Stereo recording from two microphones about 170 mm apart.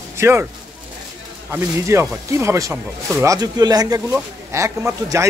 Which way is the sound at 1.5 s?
15° right (ahead or behind).